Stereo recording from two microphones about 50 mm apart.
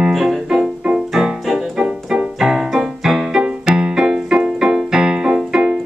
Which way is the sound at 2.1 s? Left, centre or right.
Centre.